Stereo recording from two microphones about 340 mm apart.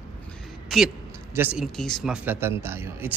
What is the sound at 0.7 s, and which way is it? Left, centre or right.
Speech, centre.